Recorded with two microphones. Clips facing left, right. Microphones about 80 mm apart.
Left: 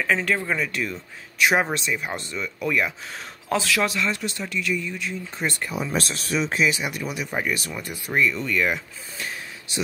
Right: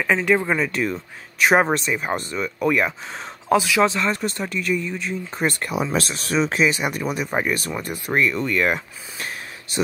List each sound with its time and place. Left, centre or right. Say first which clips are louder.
0.0 s speech: right 4 dB; centre
0.7 s speech: right 5 dB; right
3.4 s speech: right 6 dB; centre
3.9 s speech: right 3 dB; right
5.4 s speech: right 4 dB; right
5.7 s speech: right 4 dB; right
6.7 s speech: right 4 dB; right